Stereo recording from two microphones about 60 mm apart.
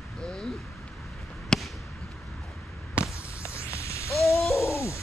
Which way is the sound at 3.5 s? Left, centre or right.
Left.